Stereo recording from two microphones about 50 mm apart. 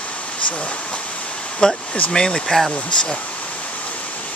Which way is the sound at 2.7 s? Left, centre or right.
Left.